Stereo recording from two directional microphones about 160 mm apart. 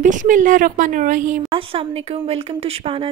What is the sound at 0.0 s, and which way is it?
A woman's voice, 50° right (ahead or behind).